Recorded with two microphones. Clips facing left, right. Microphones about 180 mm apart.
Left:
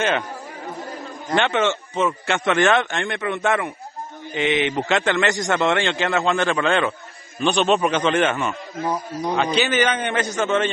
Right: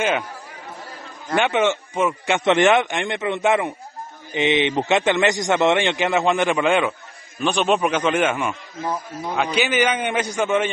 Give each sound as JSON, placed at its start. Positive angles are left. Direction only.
{"t": 1.3, "sound": "a man's voice", "side_deg": -15}
{"t": 8.8, "sound": "a man's voice", "side_deg": 10}
{"t": 9.3, "sound": "a man's voice", "side_deg": -10}